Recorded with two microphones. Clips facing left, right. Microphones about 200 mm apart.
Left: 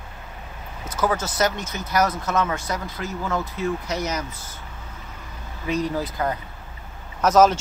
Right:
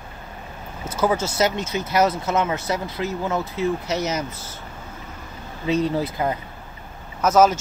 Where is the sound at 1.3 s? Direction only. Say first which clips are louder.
Right 2 dB; 20° right (ahead or behind).